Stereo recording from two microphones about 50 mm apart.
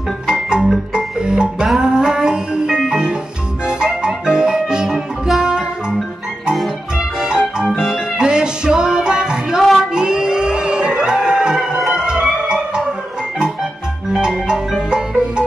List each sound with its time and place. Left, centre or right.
0.3 s organ: centre
0.9 s music: centre
7.0 s music: centre
9.8 s a sound: centre
11.8 s organ: centre
14.1 s music: centre